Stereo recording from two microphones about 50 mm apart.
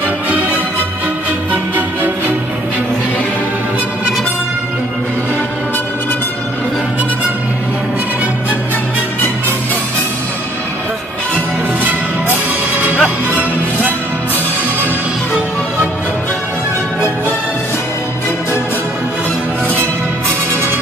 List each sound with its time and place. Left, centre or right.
1.5 s music: right
12.7 s music: right